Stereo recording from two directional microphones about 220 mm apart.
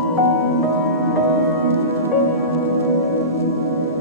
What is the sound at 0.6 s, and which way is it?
Music, 15° right (ahead or behind).